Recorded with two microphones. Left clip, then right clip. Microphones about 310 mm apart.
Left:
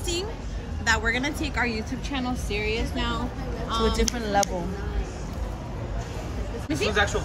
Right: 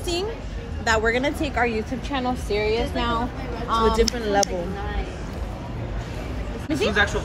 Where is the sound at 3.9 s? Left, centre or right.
Centre.